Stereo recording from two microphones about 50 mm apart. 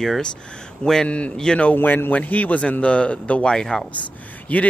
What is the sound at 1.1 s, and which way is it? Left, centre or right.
Speech, left.